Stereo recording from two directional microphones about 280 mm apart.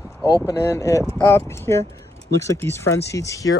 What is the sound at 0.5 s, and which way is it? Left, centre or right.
Speech, centre.